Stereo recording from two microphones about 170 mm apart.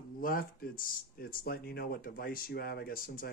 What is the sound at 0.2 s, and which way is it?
Speech, 55° left (ahead or behind).